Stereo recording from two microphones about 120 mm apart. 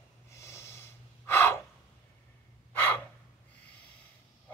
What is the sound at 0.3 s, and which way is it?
Gasp, 25° left (ahead or behind).